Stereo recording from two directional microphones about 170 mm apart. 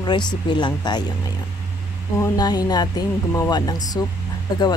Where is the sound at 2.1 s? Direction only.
25° left (ahead or behind).